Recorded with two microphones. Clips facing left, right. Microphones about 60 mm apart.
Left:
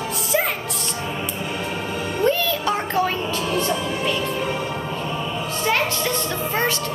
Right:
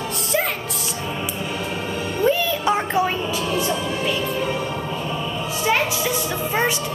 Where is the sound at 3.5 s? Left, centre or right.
Centre.